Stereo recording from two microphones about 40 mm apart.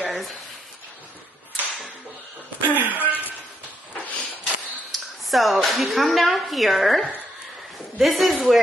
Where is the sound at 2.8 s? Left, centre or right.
Right.